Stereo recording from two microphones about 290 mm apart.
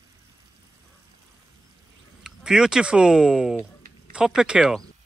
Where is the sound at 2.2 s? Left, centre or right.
Centre.